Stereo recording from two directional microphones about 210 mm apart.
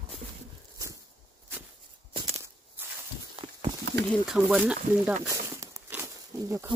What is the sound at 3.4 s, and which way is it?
Clip-clop, 25° right (ahead or behind).